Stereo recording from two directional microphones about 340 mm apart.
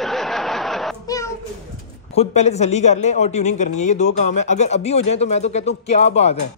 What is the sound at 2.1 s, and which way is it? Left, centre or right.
Speech, centre.